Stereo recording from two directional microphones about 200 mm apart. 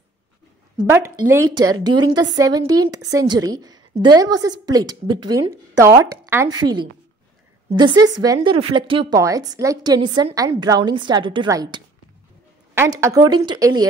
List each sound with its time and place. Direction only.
1.1 s a woman's voice: 15° right (ahead or behind)
7.7 s a woman's voice: 20° right (ahead or behind)
13.0 s a woman's voice: 20° right (ahead or behind)